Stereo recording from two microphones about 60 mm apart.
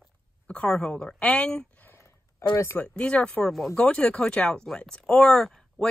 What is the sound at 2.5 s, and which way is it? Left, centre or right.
Speech, left.